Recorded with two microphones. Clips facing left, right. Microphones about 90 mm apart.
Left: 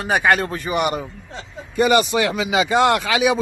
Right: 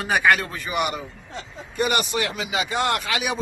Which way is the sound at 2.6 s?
90° left.